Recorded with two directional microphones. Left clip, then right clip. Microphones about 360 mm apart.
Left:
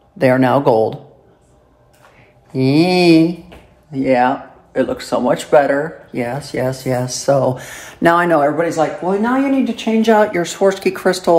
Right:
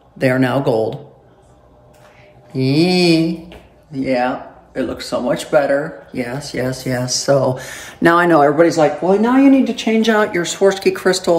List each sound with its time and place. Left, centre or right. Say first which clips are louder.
0.2 s speech: left 3 dB; centre
2.5 s speech: left 2 dB; centre